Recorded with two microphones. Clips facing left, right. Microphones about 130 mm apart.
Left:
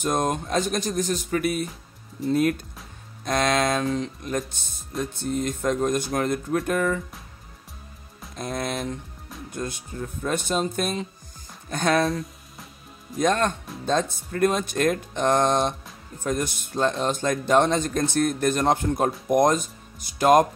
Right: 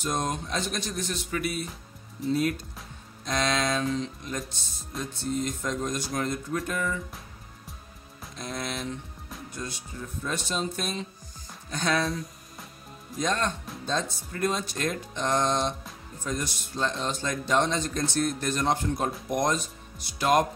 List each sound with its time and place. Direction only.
0.0 s speech: 55° left (ahead or behind)
8.4 s speech: 50° left (ahead or behind)
13.2 s speech: 55° left (ahead or behind)